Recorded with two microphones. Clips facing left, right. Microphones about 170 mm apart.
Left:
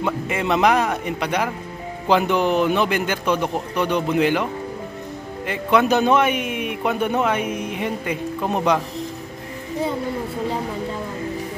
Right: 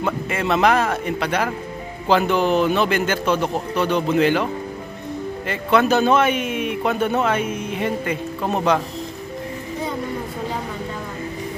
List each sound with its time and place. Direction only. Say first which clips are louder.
0.0 s a man's voice: even; 15° left (ahead or behind)
5.5 s a man's voice: even; 15° left (ahead or behind)